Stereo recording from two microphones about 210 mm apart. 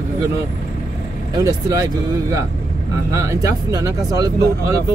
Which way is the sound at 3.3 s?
15° right (ahead or behind).